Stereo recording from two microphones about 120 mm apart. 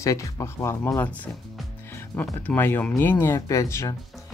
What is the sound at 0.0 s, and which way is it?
Speech, 25° left (ahead or behind).